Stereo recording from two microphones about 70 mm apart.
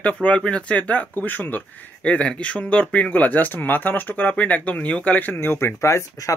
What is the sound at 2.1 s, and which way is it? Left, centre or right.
Speech, centre.